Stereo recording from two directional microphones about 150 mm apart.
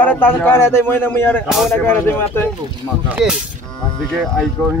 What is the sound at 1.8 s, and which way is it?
Speech, 15° left (ahead or behind).